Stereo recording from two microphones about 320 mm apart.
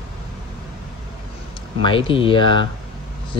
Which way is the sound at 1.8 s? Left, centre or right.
Centre.